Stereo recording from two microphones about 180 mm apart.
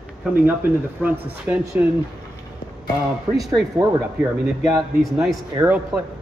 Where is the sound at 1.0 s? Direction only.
5° right (ahead or behind).